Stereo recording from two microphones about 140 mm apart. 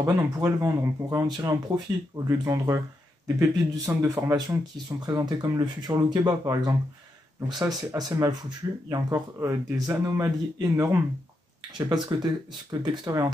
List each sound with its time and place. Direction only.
0.0 s speech: 25° right (ahead or behind)